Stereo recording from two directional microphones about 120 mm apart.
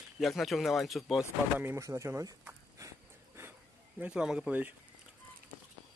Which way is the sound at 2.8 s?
25° right (ahead or behind).